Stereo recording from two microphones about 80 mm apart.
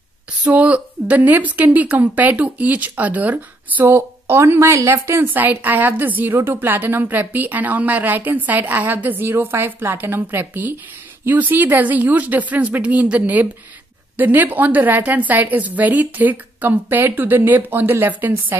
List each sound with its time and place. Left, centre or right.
0.4 s a woman's voice: centre
3.8 s a woman's voice: right